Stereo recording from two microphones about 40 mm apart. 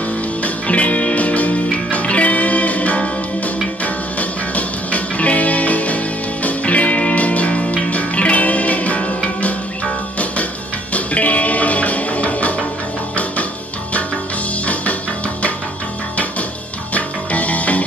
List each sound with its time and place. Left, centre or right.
0.4 s music: left
10.9 s music: left
16.9 s music: left